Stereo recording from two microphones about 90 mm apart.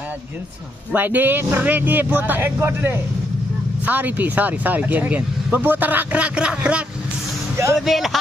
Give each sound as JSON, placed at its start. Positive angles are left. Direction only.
{"t": 0.9, "sound": "speech", "side_deg": -20}
{"t": 7.8, "sound": "speech", "side_deg": 0}